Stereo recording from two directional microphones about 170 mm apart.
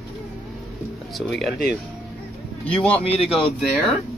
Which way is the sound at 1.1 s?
Centre (ahead or behind).